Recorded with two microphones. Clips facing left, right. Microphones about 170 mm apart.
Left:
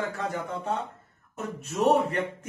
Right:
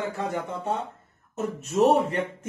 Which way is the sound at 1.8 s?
30° right (ahead or behind).